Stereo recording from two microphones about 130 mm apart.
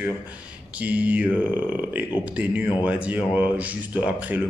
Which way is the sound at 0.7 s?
10° right (ahead or behind).